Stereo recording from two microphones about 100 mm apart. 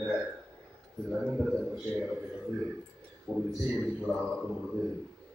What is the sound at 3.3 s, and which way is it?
Speech, 10° right (ahead or behind).